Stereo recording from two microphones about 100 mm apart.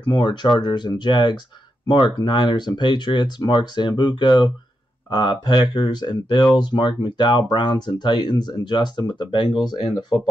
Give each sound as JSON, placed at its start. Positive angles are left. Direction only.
{"t": 0.1, "sound": "speech", "side_deg": 50}